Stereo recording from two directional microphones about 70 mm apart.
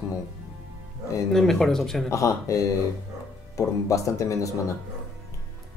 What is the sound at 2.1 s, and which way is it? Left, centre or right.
Speech, left.